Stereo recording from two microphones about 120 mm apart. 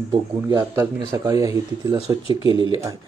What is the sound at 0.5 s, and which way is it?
A man's voice, 25° right (ahead or behind).